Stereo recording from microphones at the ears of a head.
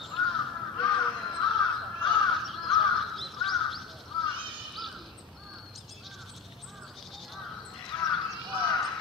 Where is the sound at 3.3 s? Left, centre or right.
Left.